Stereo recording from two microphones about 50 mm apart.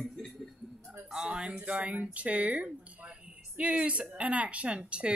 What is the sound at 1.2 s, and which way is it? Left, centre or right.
Speech, centre.